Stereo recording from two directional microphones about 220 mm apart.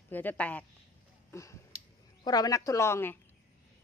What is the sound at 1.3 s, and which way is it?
Finger snapping, 15° left (ahead or behind).